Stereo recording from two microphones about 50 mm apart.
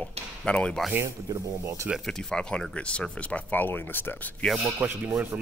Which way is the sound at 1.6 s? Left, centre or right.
Right.